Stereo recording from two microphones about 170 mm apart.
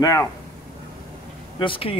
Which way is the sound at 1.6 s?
30° left (ahead or behind).